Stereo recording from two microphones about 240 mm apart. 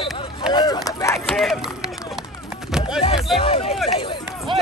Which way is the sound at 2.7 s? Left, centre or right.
Centre.